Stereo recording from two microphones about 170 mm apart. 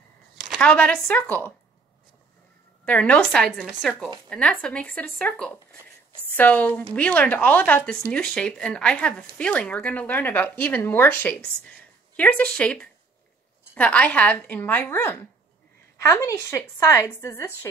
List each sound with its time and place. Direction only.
0.4 s speech: 5° left (ahead or behind)
2.8 s speech: 10° left (ahead or behind)